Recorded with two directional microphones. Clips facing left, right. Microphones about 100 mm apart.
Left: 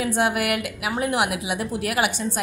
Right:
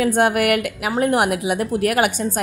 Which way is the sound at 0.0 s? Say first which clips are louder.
Right 5 dB; 50° right (ahead or behind).